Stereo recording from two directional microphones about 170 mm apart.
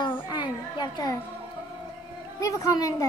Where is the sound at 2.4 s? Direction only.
20° left (ahead or behind).